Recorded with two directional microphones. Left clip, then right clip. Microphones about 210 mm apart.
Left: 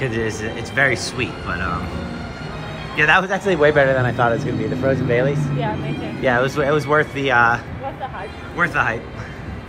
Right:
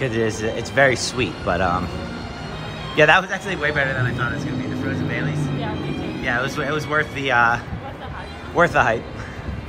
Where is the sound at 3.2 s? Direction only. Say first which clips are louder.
Left 7 dB; 5° left (ahead or behind).